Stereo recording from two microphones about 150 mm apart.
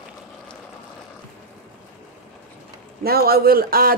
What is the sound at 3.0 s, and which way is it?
Speech, 90° right.